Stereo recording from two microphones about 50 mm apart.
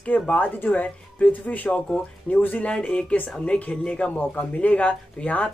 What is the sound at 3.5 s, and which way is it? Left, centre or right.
Speech, left.